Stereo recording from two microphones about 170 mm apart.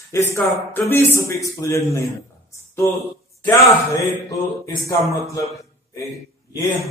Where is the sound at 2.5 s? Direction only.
15° left (ahead or behind).